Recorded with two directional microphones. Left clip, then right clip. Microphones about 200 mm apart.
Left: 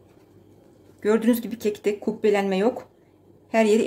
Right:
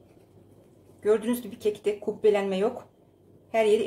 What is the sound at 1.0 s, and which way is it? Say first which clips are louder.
Speech: left 3 dB; 45° left (ahead or behind).